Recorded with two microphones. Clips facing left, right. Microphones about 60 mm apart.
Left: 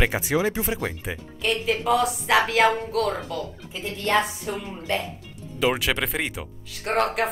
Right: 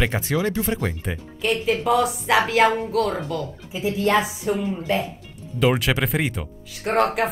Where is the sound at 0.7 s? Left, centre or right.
Centre.